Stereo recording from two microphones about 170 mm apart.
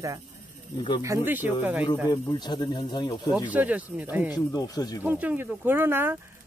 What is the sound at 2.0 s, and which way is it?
Speech, 25° left (ahead or behind).